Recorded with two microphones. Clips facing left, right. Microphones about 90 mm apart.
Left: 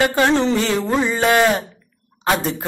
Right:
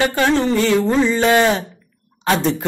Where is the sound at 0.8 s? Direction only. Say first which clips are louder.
Right 2 dB; 15° left (ahead or behind).